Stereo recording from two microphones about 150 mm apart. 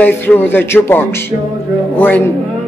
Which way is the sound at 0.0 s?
15° left (ahead or behind).